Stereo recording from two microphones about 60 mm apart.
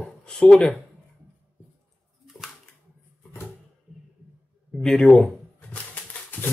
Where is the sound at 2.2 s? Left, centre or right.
Centre.